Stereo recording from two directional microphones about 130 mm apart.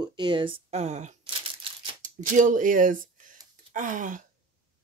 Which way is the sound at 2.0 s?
80° right.